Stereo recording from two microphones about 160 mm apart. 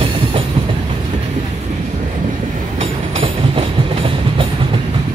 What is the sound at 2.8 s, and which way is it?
Train, 35° right (ahead or behind).